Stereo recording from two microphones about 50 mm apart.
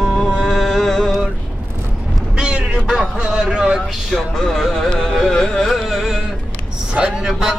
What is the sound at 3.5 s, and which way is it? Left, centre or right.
Speech, centre.